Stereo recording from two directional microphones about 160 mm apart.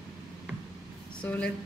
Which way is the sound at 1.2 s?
10° left (ahead or behind).